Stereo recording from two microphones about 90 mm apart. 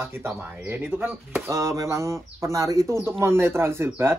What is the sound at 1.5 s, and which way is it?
Speech, 35° right (ahead or behind).